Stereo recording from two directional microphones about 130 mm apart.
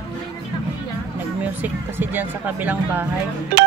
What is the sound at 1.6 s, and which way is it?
Speech, 15° right (ahead or behind).